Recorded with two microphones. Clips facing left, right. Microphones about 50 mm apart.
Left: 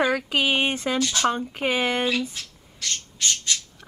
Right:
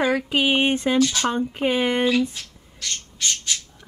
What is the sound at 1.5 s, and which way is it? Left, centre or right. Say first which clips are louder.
Speech: right 2 dB; centre.